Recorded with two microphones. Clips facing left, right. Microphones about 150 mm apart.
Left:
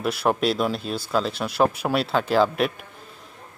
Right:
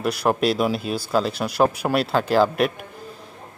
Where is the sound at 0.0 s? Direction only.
Centre (ahead or behind).